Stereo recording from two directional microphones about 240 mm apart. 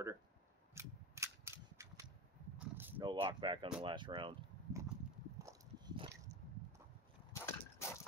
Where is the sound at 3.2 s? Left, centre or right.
Centre.